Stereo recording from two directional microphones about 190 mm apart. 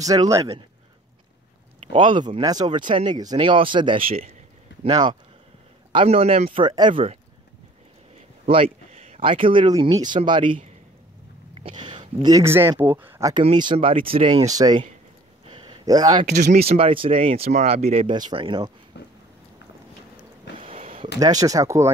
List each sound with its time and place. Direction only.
0.0 s speech: 20° right (ahead or behind)
1.8 s speech: 25° right (ahead or behind)
8.5 s speech: 30° right (ahead or behind); by 13.3 s 10° right (ahead or behind)
13.3 s speech: 25° right (ahead or behind)
14.4 s speech: 20° right (ahead or behind)
15.4 s a sound: 25° right (ahead or behind)
16.3 s speech: 60° right (ahead or behind)
16.6 s speech: 30° right (ahead or behind)
18.9 s a sound: 65° left (ahead or behind)
20.5 s a sound: 30° right (ahead or behind)
21.2 s speech: 20° right (ahead or behind)